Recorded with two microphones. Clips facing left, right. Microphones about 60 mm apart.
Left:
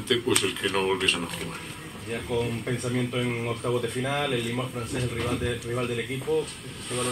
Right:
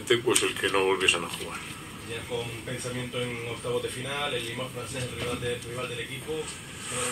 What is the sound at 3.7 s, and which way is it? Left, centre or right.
Speech, left.